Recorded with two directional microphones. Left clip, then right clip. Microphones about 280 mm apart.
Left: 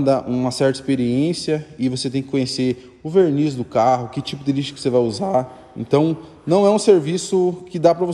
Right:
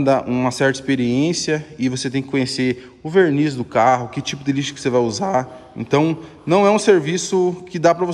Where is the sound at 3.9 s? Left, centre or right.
Centre.